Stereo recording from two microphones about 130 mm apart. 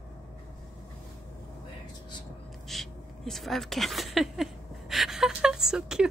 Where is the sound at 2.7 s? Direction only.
Centre (ahead or behind).